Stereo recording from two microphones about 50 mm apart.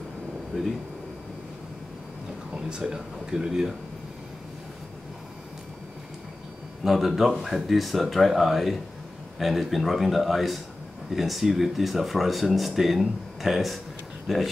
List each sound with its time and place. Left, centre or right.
0.5 s speech: centre
2.5 s speech: centre
6.8 s speech: centre